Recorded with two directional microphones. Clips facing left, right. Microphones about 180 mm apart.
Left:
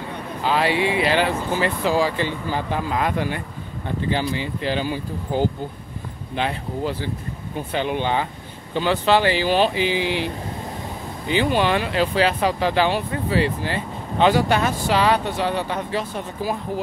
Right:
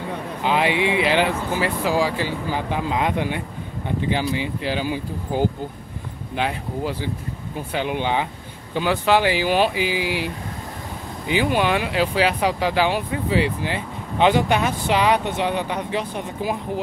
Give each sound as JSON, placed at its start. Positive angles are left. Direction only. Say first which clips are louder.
{"t": 0.4, "sound": "speech", "louder": "even", "side_deg": -15}